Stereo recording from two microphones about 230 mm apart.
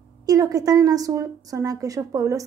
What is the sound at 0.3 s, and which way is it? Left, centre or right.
A woman's voice, centre.